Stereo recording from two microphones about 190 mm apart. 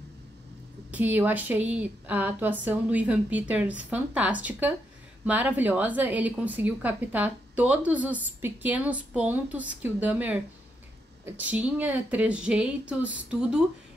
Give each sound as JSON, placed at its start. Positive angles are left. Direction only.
{"t": 0.9, "sound": "a woman's voice", "side_deg": -10}